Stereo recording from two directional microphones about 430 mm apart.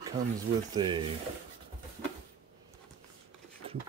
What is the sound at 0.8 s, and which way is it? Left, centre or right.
Speech, centre.